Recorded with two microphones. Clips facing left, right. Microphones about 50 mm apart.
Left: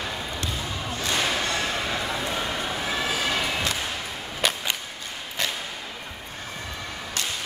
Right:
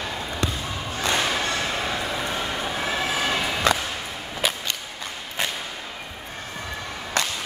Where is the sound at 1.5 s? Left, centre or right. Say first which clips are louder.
Right 1 dB; centre.